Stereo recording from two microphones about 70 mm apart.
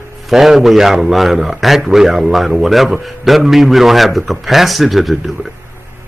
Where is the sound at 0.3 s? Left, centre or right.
Centre.